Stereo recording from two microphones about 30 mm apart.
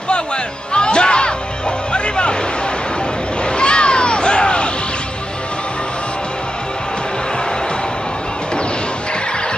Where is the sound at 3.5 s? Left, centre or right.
Left.